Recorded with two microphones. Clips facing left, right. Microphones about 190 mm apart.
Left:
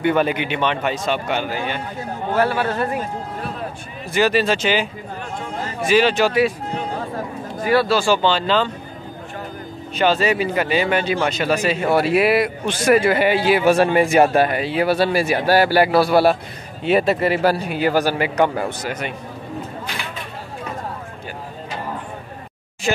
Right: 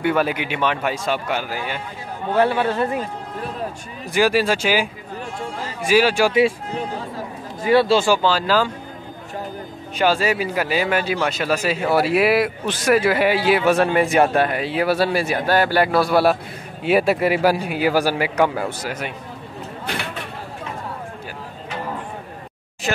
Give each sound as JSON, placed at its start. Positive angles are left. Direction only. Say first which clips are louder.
{"t": 0.0, "sound": "a man's voice", "louder": "left 2 dB", "side_deg": -5}
{"t": 2.3, "sound": "speech", "louder": "right 2 dB", "side_deg": -20}
{"t": 4.1, "sound": "a man's voice", "louder": "even", "side_deg": -10}
{"t": 7.6, "sound": "speech", "louder": "right 2 dB", "side_deg": -25}
{"t": 8.1, "sound": "a man's voice", "louder": "even", "side_deg": -5}
{"t": 9.9, "sound": "a man's voice", "louder": "left 1 dB", "side_deg": -10}